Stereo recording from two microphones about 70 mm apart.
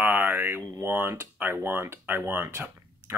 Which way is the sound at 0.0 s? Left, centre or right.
Right.